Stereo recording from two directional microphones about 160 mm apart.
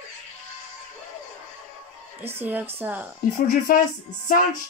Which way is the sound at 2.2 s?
15° right (ahead or behind).